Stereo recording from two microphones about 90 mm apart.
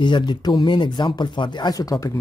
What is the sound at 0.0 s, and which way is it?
Speech, 55° left (ahead or behind).